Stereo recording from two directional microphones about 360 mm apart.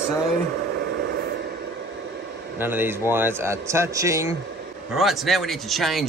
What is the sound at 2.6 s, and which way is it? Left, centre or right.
A man's voice, centre.